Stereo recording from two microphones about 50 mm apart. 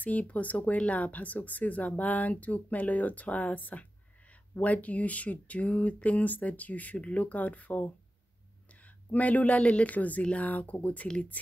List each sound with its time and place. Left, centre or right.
0.0 s speech: left
9.1 s speech: left